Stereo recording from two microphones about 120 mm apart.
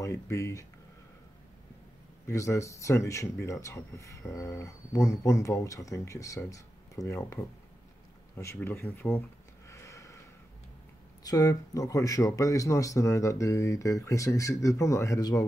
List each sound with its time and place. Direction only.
0.0 s speech: 25° left (ahead or behind)
2.2 s speech: 25° left (ahead or behind)
9.7 s a sound: 25° left (ahead or behind)
11.2 s speech: 30° left (ahead or behind)